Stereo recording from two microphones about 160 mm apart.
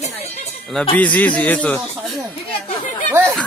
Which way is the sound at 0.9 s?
10° left (ahead or behind).